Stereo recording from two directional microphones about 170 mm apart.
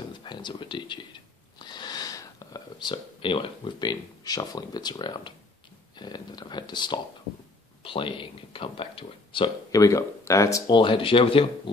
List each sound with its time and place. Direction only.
0.1 s speech: 25° left (ahead or behind)
9.7 s speech: 20° left (ahead or behind)